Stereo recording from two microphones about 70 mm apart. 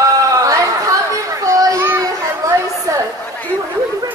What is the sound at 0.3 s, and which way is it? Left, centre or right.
Chatter, right.